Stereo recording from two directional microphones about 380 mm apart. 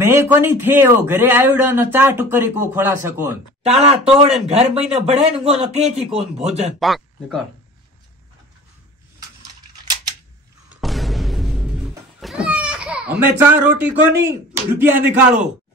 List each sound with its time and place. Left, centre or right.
0.0 s a man's voice: centre
3.6 s speech: centre
6.8 s a man's voice: centre
10.7 s cat: centre